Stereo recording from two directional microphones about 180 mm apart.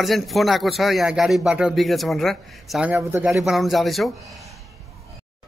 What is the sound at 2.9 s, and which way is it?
Speech, 15° right (ahead or behind).